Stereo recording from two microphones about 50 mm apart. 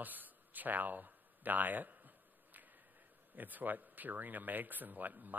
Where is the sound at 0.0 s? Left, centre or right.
Right.